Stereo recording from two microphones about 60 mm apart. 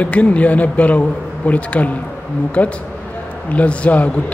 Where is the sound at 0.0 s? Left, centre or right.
Left.